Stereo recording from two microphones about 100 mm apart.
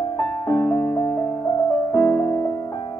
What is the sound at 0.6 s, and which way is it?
Music, 20° left (ahead or behind).